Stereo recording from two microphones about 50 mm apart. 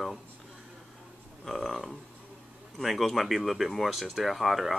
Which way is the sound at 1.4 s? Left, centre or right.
Centre.